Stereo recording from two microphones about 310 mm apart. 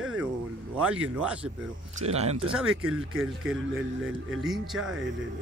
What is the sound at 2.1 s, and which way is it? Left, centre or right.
Speech, right.